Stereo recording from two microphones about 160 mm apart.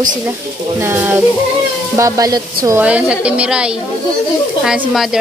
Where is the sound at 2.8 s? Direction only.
10° right (ahead or behind).